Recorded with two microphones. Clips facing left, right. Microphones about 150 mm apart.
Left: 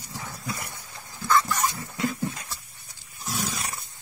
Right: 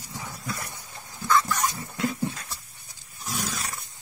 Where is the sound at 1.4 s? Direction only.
15° left (ahead or behind).